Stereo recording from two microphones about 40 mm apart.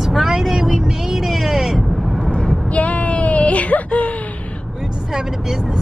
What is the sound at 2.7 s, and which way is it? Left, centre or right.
Whimper, left.